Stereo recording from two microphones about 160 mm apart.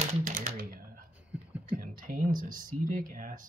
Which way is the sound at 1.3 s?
10° right (ahead or behind).